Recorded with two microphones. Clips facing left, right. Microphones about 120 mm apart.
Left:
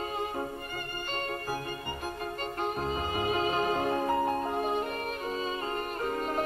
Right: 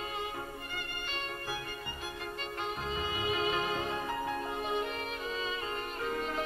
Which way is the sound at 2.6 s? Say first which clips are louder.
Left 4 dB; 45° left (ahead or behind).